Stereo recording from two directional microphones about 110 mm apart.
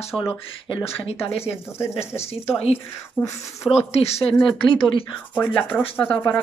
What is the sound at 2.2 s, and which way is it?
Speech, 70° left (ahead or behind).